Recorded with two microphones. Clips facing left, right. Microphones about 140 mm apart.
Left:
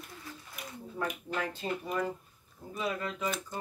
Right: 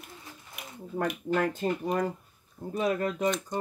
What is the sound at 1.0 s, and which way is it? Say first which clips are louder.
Speech: right 7 dB; 55° right (ahead or behind).